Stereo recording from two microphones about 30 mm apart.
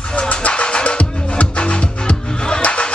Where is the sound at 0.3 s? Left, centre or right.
Left.